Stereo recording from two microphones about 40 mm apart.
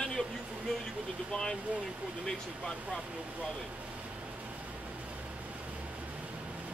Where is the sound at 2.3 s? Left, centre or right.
Centre.